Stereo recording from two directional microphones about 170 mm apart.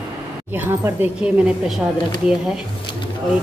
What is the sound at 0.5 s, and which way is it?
Speech, 15° right (ahead or behind).